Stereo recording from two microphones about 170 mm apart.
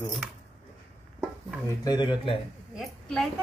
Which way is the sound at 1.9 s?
25° left (ahead or behind).